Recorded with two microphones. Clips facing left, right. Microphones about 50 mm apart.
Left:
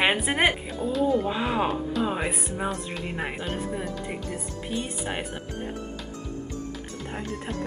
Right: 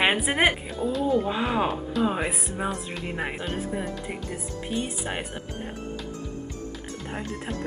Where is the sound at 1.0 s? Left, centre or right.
Right.